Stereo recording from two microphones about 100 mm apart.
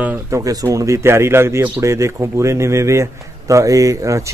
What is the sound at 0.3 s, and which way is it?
Speech, 35° right (ahead or behind).